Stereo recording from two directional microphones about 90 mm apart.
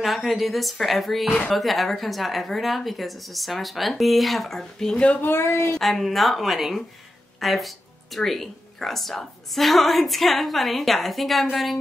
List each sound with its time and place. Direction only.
0.0 s speech: centre (ahead or behind)
5.3 s speech: 30° left (ahead or behind)
5.8 s speech: centre (ahead or behind)